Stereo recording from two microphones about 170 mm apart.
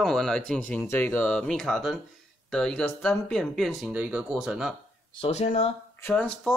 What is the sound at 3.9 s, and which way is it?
Speech, 10° right (ahead or behind).